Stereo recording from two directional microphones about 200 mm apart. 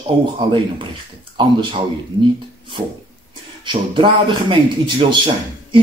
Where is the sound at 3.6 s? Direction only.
25° right (ahead or behind).